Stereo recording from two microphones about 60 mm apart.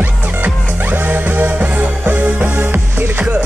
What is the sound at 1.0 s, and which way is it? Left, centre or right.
Music, right.